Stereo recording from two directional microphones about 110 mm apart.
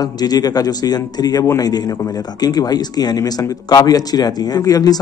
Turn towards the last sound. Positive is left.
turn(degrees=35)  # may be behind; listen again after turning